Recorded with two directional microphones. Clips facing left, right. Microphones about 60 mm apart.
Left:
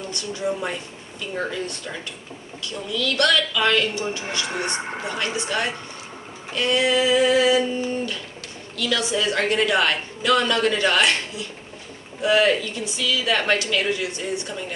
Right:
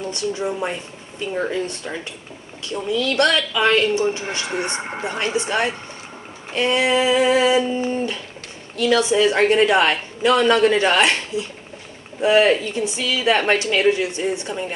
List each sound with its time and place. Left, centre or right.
0.1 s a man's voice: right
2.6 s a man's voice: right